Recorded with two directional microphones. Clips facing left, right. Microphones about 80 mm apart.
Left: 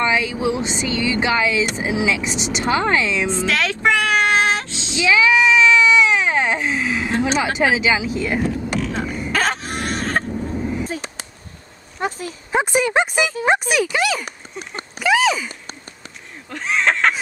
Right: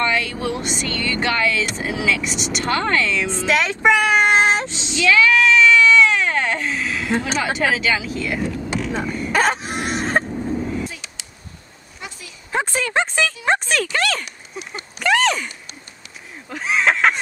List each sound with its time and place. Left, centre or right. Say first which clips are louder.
0.0 s speech: left 2 dB; centre
3.4 s child singing: right 4 dB; centre
4.9 s baby cry: even; centre
8.7 s a sound: even; centre
9.3 s cough: right 3 dB; centre
10.8 s a sound: left 3 dB; left
12.0 s speech: left 12 dB; left
12.5 s speech: left 3 dB; centre